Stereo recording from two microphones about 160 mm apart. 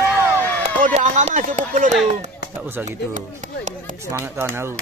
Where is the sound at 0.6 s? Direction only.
45° right (ahead or behind).